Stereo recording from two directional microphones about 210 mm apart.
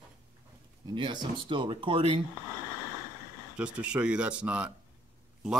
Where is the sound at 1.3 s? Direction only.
25° right (ahead or behind).